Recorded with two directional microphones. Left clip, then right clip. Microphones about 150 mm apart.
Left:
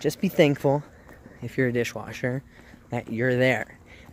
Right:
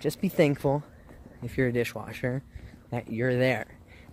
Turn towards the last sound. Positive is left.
turn(degrees=15)  # may be behind; listen again after turning